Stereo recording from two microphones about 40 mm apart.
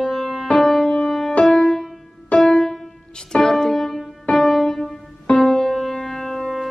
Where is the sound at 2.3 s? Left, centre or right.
Left.